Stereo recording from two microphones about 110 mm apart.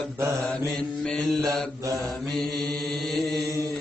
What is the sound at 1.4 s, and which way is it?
Mantra, 35° right (ahead or behind).